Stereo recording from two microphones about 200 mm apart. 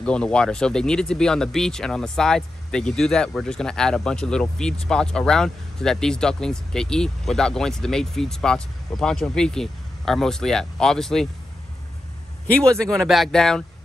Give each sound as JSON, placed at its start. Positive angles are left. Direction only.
{"t": 0.0, "sound": "speech", "side_deg": 5}
{"t": 12.4, "sound": "speech", "side_deg": 5}